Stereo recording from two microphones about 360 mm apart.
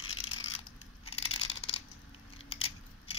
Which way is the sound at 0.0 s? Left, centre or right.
Left.